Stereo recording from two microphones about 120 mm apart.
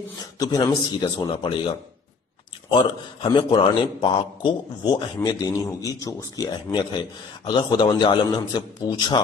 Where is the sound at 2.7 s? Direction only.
40° left (ahead or behind).